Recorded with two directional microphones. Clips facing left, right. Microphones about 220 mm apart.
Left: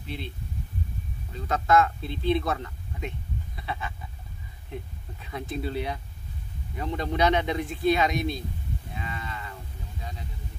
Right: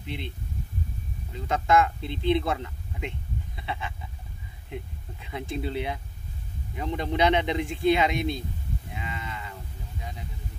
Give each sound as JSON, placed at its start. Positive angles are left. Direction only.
{"t": 0.0, "sound": "speech", "side_deg": -20}
{"t": 1.3, "sound": "speech", "side_deg": -15}
{"t": 5.2, "sound": "speech", "side_deg": -20}
{"t": 8.9, "sound": "livestock", "side_deg": -15}